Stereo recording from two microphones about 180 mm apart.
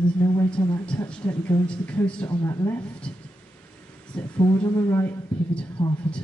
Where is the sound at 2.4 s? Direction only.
15° left (ahead or behind).